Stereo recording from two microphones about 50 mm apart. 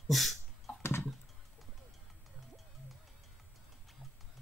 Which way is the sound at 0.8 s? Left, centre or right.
Left.